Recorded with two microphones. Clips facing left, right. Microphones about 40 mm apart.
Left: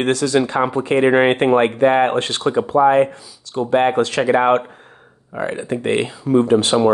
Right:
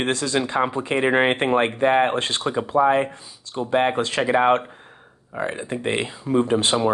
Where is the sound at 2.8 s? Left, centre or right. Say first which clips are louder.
Left 4 dB; left.